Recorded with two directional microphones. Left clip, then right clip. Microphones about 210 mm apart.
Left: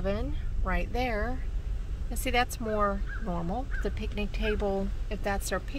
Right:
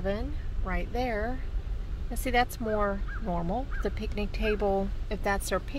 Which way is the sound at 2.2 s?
Centre (ahead or behind).